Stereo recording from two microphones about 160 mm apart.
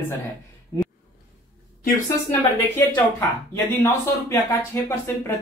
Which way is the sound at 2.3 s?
15° left (ahead or behind).